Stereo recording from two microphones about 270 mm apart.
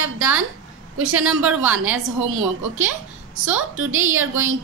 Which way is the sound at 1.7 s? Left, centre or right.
Right.